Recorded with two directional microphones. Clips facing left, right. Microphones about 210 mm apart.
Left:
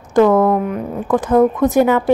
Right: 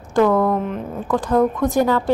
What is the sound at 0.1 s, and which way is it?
Speech, 20° left (ahead or behind).